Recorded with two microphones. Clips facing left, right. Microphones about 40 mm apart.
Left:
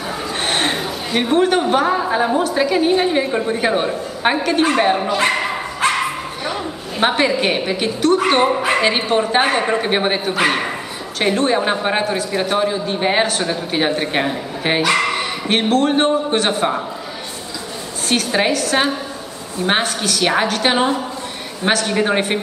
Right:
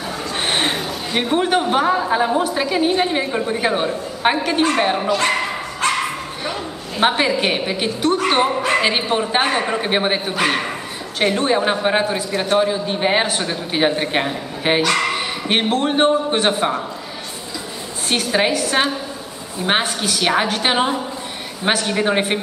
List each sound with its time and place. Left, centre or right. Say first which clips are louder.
0.4 s a sound: even; centre
0.7 s a woman's voice: left 2 dB; centre
5.0 s speech: left 1 dB; left
5.8 s dog: left 2 dB; centre
7.0 s a woman's voice: left 1 dB; centre
8.3 s a woman's voice: left 2 dB; centre
8.8 s a woman's voice: left 2 dB; centre
15.4 s a woman's voice: left 3 dB; centre
18.1 s a woman's voice: left 1 dB; centre